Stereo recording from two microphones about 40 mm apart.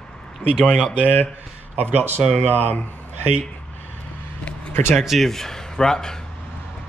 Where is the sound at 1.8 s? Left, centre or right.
Right.